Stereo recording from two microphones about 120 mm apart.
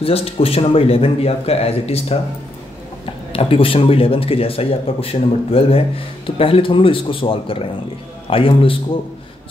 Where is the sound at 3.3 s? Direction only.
50° left (ahead or behind).